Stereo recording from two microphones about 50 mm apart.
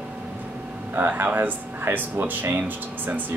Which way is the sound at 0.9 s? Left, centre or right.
Right.